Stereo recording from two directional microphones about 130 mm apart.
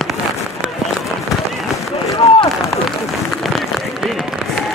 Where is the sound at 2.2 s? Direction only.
50° left (ahead or behind).